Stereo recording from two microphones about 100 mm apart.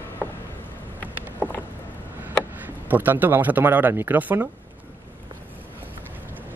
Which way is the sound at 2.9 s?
20° right (ahead or behind).